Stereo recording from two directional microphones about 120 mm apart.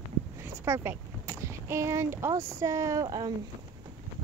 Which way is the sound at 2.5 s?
25° right (ahead or behind).